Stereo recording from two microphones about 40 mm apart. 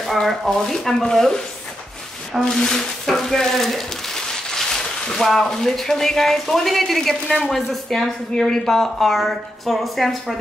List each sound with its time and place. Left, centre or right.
0.3 s speech: centre
2.3 s speech: centre
2.7 s speech: centre